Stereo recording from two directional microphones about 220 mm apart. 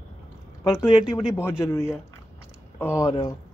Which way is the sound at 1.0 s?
5° right (ahead or behind).